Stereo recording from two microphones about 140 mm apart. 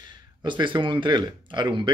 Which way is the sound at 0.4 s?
35° right (ahead or behind).